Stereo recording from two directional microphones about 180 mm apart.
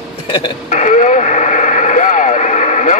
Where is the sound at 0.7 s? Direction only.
45° left (ahead or behind).